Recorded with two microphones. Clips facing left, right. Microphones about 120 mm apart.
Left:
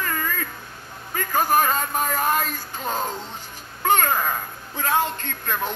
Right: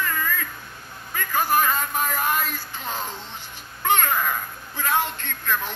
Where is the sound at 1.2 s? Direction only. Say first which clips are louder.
Left 2 dB; 40° left (ahead or behind).